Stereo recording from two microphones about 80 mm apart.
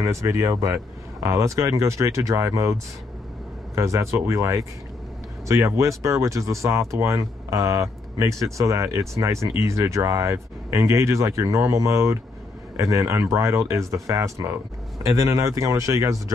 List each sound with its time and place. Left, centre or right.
0.0 s speech: right
5.8 s speech: right